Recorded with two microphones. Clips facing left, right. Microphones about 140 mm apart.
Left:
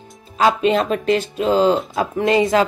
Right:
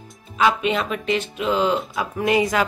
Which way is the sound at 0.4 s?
35° left (ahead or behind).